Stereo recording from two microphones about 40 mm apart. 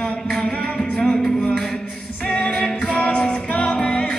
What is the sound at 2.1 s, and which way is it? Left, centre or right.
Singing, left.